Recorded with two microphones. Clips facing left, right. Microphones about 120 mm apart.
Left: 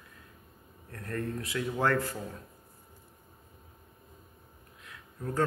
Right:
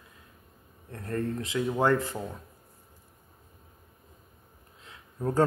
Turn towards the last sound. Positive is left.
turn(degrees=-30)  # may be behind; listen again after turning